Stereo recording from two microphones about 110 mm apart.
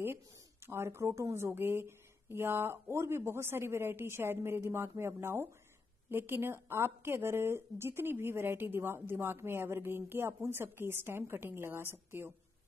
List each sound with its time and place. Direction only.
0.7 s speech: 25° right (ahead or behind)